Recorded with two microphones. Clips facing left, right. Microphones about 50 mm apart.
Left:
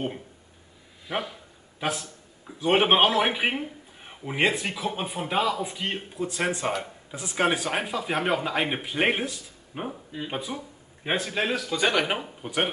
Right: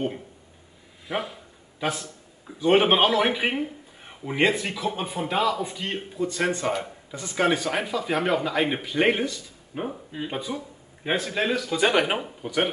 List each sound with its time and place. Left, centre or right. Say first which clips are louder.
1.0 s a man's voice: right 1 dB; centre
9.8 s speech: right 1 dB; centre
10.3 s a man's voice: right 1 dB; centre
11.7 s speech: right 3 dB; centre
12.4 s speech: right 3 dB; centre